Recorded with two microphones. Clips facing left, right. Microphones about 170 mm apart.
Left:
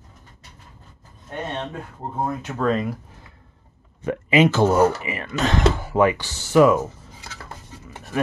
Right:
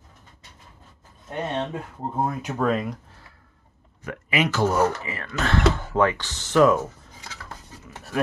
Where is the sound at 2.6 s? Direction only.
5° right (ahead or behind).